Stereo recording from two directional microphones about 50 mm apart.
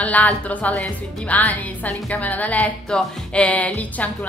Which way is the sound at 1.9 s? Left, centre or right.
Centre.